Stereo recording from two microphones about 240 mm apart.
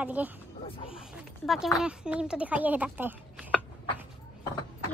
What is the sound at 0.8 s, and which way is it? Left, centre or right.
Dog, centre.